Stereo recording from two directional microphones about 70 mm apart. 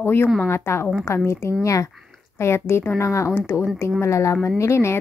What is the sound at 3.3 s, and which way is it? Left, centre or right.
Speech, left.